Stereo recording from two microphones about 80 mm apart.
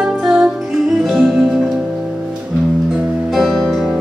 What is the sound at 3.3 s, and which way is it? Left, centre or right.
Music, centre.